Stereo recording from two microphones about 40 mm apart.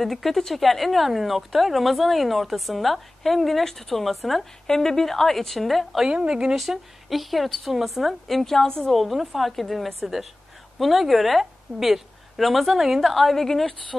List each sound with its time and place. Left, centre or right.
0.0 s speech: centre
4.6 s a woman's voice: centre
6.0 s speech: right
6.5 s speech: centre
8.9 s speech: centre